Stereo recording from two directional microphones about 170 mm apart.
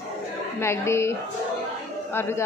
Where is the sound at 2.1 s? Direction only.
15° left (ahead or behind).